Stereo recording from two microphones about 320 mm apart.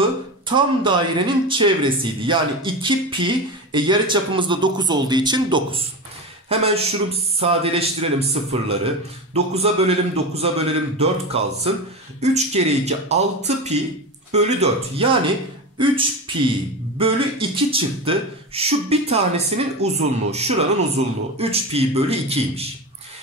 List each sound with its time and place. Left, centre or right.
0.5 s speech: centre